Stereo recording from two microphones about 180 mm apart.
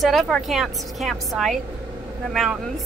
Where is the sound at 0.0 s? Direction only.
Centre (ahead or behind).